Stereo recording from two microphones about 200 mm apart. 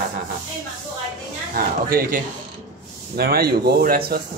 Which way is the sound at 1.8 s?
45° right (ahead or behind).